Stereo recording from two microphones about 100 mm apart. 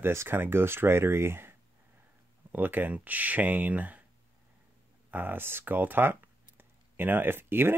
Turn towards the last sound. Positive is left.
turn(degrees=-20)  # may be behind; listen again after turning